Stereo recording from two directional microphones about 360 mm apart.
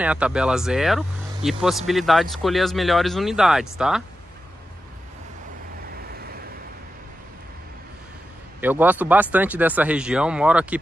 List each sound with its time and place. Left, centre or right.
0.0 s speech: centre
6.0 s vehicle: right
8.5 s speech: centre